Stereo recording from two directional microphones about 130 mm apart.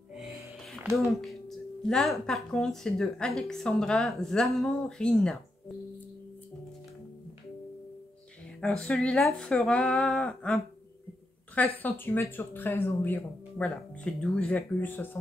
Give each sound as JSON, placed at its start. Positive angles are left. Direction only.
{"t": 0.1, "sound": "music", "side_deg": -5}
{"t": 0.9, "sound": "speech", "side_deg": 0}
{"t": 8.5, "sound": "speech", "side_deg": 5}